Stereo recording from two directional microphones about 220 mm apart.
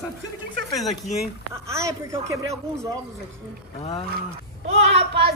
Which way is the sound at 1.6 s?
15° right (ahead or behind).